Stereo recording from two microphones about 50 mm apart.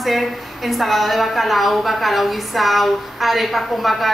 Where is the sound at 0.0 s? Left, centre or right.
Centre.